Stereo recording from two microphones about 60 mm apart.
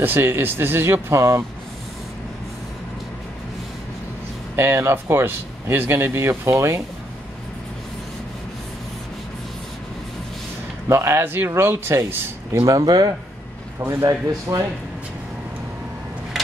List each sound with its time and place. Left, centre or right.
0.0 s speech: right
1.1 s speech: right
4.6 s speech: right
10.9 s speech: right
12.5 s speech: right
13.7 s a man's voice: right
14.5 s speech: right